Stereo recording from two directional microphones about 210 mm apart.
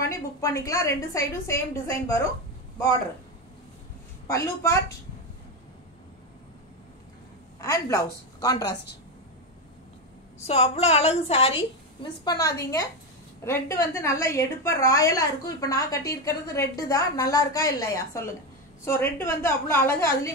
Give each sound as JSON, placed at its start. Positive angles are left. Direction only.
{"t": 0.0, "sound": "a woman's voice", "side_deg": 15}
{"t": 4.3, "sound": "a woman's voice", "side_deg": 15}
{"t": 7.6, "sound": "a woman's voice", "side_deg": 15}
{"t": 10.4, "sound": "a woman's voice", "side_deg": 30}